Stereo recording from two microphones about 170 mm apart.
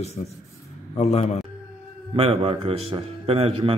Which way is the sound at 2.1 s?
35° right (ahead or behind).